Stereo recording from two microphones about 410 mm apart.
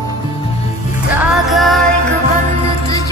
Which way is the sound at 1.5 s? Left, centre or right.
Centre.